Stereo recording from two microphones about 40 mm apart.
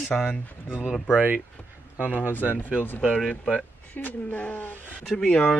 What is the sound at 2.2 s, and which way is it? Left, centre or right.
Speech, left.